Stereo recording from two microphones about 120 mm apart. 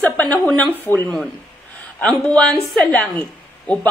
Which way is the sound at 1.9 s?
5° left (ahead or behind).